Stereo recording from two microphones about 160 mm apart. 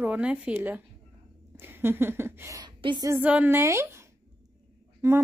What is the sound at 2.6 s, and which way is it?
Speech, 25° right (ahead or behind).